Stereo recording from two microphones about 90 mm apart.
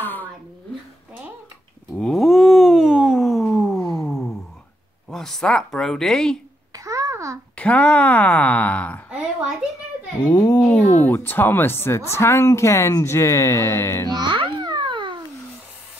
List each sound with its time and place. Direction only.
0.0 s a sound: 20° left (ahead or behind)
2.0 s a sound: centre (ahead or behind)
5.1 s speech: 5° left (ahead or behind)
6.7 s babbling: 40° right (ahead or behind)
7.5 s speech: 15° left (ahead or behind)
10.3 s speech: 45° left (ahead or behind)
10.6 s speech: 15° left (ahead or behind); by 14.0 s 30° left (ahead or behind)
14.1 s babbling: 65° right (ahead or behind)